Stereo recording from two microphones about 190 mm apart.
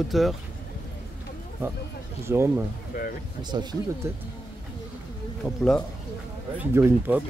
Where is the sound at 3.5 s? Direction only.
20° right (ahead or behind).